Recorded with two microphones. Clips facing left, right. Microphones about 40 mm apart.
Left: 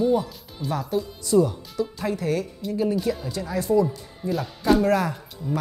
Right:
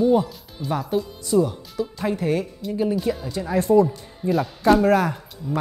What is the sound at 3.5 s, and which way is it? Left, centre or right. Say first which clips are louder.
Speech: right 4 dB; right.